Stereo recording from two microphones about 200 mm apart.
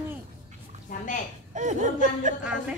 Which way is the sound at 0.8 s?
40° left (ahead or behind).